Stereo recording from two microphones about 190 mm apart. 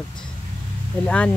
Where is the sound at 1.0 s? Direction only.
5° left (ahead or behind).